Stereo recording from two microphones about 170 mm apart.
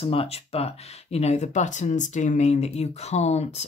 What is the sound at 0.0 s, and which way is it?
Speech, 35° left (ahead or behind).